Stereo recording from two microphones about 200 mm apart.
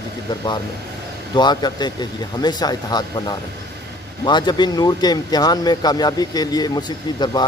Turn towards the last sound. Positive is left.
turn(degrees=20)  # may be behind; listen again after turning